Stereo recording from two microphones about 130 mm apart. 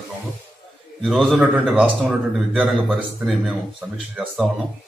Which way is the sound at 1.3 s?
10° right (ahead or behind).